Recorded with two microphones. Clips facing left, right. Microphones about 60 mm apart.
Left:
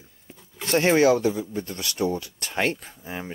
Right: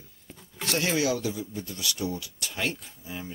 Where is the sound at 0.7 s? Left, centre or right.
Left.